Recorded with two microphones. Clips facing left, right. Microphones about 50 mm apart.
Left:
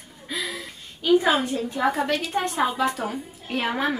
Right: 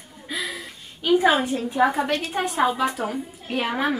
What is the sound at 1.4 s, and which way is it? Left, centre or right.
A woman's voice, centre.